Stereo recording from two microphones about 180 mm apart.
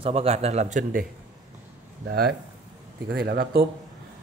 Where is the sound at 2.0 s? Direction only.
60° right (ahead or behind).